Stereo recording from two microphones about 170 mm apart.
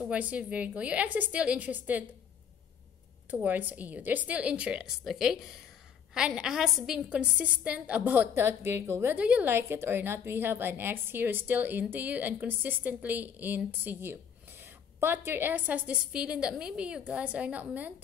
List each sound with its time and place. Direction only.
0.0 s a woman's voice: 10° right (ahead or behind)
3.3 s a woman's voice: 10° right (ahead or behind)